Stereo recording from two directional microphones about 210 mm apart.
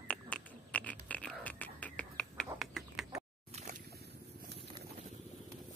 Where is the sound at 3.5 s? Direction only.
35° right (ahead or behind).